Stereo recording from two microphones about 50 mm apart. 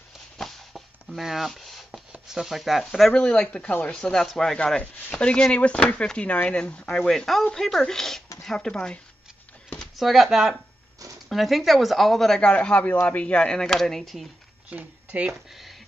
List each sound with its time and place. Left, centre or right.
0.4 s chopping: centre
2.2 s speech: centre
3.1 s speech: centre
5.2 s speech: left
9.9 s speech: centre
12.4 s speech: centre
13.7 s speech: centre
14.8 s speech: right